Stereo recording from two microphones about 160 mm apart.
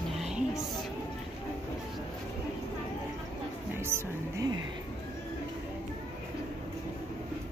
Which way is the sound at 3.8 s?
15° right (ahead or behind).